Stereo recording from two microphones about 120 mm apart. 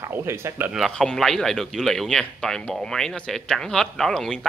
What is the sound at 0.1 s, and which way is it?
Speech, 20° right (ahead or behind).